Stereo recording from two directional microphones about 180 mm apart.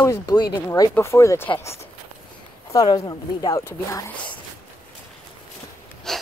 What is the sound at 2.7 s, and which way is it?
Speech, 20° left (ahead or behind).